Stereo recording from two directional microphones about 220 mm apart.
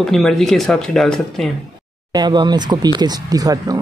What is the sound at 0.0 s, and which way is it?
Speech, centre (ahead or behind).